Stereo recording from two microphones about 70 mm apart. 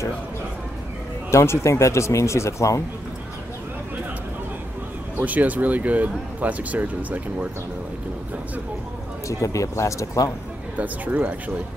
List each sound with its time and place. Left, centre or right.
1.3 s speech: left
5.1 s speech: right
9.4 s speech: left
10.8 s speech: right